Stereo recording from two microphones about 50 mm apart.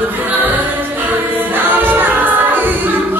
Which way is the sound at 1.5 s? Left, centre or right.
Right.